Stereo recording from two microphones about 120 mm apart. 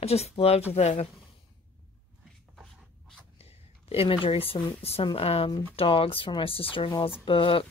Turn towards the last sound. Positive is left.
turn(degrees=50)  # may be behind; listen again after turning